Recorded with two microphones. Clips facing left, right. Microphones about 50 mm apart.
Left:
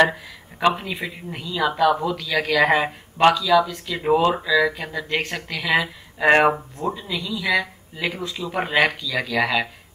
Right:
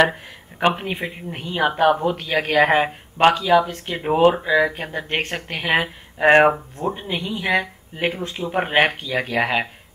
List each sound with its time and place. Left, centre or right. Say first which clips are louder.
0.1 s speech: even; right
7.0 s speech: right 2 dB; right